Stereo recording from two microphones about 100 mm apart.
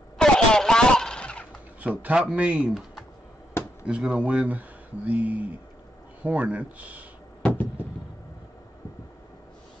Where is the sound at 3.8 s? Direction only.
10° right (ahead or behind).